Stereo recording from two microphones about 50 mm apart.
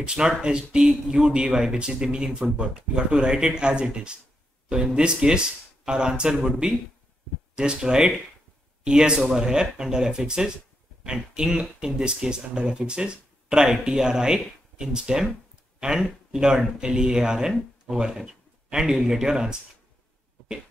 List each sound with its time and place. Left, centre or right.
0.0 s speech: centre
7.5 s speech: centre